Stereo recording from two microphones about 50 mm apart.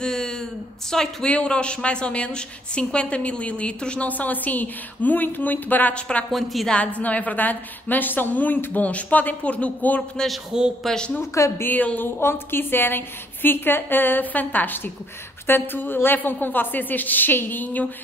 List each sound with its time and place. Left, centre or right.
0.0 s a sound: centre
0.9 s a woman's voice: centre
1.3 s a woman's voice: left
4.1 s a woman's voice: left
5.9 s a woman's voice: left
6.3 s a woman's voice: centre
7.0 s a woman's voice: left
10.5 s speech: centre
11.3 s a woman's voice: left
11.6 s a woman's voice: left
12.2 s a woman's voice: left